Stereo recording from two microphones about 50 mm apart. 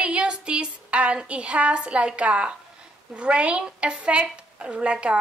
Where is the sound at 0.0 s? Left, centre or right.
Right.